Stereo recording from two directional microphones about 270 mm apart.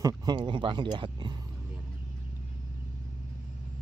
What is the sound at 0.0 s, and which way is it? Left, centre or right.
Speech, centre.